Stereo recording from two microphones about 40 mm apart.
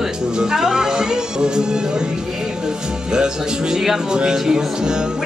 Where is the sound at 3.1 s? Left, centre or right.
Centre.